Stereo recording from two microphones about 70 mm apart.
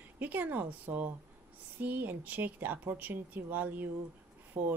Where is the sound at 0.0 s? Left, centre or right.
Right.